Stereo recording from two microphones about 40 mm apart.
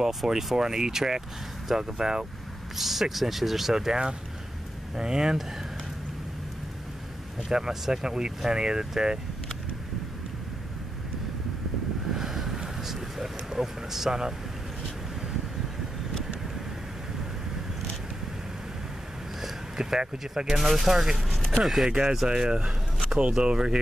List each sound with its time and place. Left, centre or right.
0.0 s speech: centre
2.8 s speech: centre
7.4 s speech: centre
12.1 s a sound: centre
19.4 s a sound: centre
20.0 s speech: right
20.5 s speech: centre